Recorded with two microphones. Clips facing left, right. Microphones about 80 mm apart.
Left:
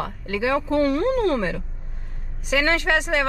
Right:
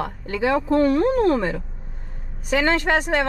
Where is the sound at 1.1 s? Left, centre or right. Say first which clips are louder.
Right 2 dB; right.